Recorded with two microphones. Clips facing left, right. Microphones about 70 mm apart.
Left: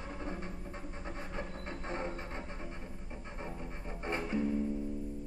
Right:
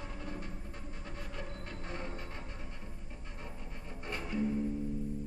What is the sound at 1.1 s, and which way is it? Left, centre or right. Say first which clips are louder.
Music: left 3 dB; left.